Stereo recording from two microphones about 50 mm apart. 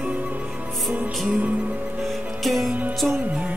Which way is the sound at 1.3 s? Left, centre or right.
Right.